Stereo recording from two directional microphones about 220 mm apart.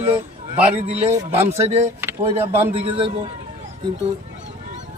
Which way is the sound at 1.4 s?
10° right (ahead or behind).